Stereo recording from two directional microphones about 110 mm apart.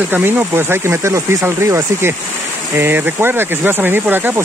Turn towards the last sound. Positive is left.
turn(degrees=-15)  # may be behind; listen again after turning